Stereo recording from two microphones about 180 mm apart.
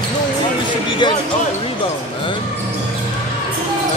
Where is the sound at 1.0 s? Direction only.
25° left (ahead or behind).